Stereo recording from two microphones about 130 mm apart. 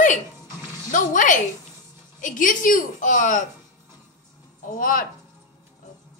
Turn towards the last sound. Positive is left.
turn(degrees=90)